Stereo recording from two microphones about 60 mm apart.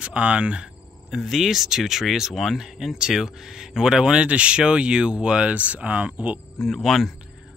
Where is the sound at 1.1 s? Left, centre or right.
Centre; by 6.4 s right.